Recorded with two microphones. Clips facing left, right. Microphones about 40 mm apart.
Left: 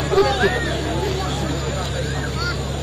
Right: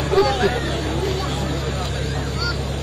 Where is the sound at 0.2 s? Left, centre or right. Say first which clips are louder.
Left 1 dB; left.